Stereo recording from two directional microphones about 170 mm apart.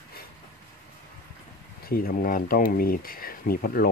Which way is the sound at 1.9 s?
60° left (ahead or behind).